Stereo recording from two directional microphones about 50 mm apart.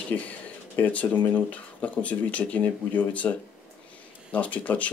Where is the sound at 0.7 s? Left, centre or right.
Left.